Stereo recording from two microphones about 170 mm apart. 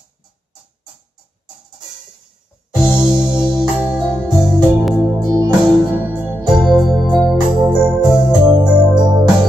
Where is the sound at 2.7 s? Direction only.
5° right (ahead or behind).